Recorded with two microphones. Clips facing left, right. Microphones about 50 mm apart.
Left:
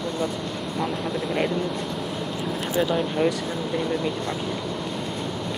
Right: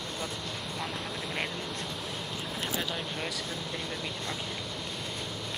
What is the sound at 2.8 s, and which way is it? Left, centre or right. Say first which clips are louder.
Speech: left 12 dB; centre.